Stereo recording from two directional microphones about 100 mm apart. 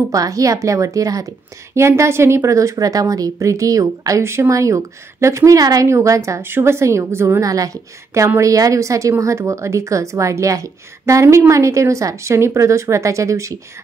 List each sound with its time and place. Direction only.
0.1 s a woman's voice: 35° right (ahead or behind)